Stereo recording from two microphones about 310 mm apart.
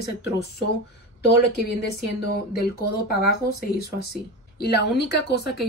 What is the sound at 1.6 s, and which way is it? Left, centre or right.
A woman's voice, left.